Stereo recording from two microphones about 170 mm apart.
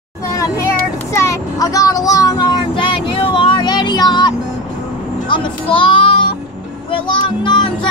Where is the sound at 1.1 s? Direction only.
15° left (ahead or behind).